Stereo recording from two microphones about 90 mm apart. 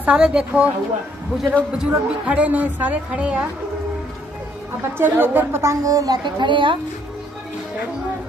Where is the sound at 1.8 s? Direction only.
15° right (ahead or behind).